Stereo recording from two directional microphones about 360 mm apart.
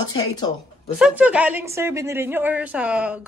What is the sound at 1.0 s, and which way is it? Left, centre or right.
Speech, centre.